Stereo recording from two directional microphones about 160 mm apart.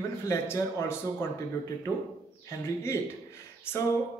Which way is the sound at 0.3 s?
15° left (ahead or behind).